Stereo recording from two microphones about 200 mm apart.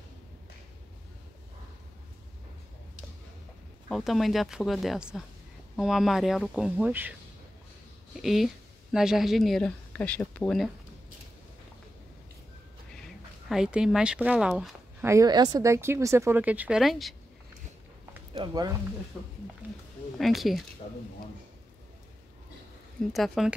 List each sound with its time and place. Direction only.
3.9 s speech: centre (ahead or behind)
8.2 s speech: centre (ahead or behind)
13.5 s speech: 5° right (ahead or behind)
15.0 s speech: 15° right (ahead or behind); by 17.1 s centre (ahead or behind)
18.3 s speech: 20° right (ahead or behind)
20.2 s speech: centre (ahead or behind)
20.8 s speech: 40° left (ahead or behind)
23.1 s speech: centre (ahead or behind)